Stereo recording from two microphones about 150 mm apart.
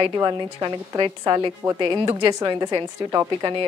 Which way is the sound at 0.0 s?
30° right (ahead or behind).